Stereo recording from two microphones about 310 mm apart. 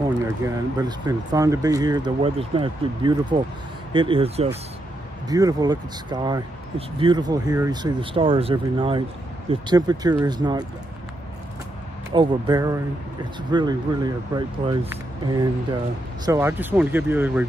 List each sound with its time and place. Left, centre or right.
0.7 s speech: centre
12.1 s speech: centre